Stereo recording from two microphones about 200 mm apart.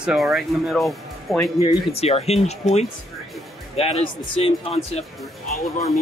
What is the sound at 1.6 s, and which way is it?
Speech, 30° left (ahead or behind).